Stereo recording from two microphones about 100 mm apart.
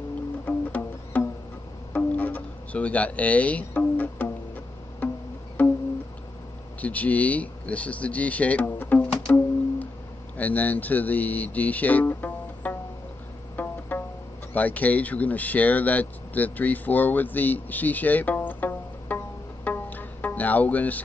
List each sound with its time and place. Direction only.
0.5 s music: 15° left (ahead or behind)
6.8 s speech: 15° left (ahead or behind)
13.6 s pizzicato: 20° left (ahead or behind)
14.5 s speech: 15° left (ahead or behind)